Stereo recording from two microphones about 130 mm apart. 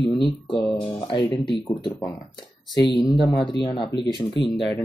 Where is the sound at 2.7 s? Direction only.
35° left (ahead or behind).